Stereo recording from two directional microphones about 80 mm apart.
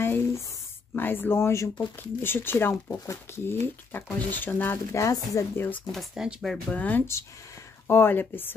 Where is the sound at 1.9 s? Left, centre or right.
Left.